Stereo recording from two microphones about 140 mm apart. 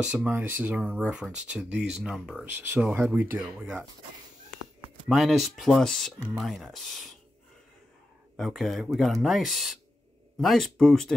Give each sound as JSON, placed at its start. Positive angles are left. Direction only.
{"t": 0.0, "sound": "speech", "side_deg": -10}
{"t": 2.4, "sound": "speech", "side_deg": -15}
{"t": 2.8, "sound": "speech", "side_deg": -5}
{"t": 5.0, "sound": "speech", "side_deg": 0}
{"t": 8.4, "sound": "speech", "side_deg": 0}